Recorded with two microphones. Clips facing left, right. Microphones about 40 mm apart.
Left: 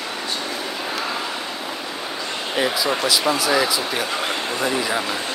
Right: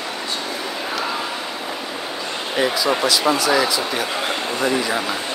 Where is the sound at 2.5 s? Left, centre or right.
Centre.